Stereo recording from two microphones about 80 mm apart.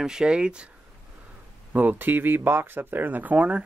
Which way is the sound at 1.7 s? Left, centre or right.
Right.